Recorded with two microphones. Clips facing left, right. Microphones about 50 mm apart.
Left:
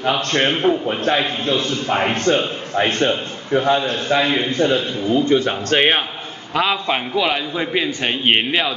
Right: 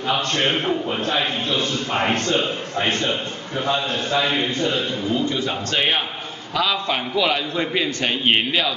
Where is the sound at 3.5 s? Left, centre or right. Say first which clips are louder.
Left 6 dB; left.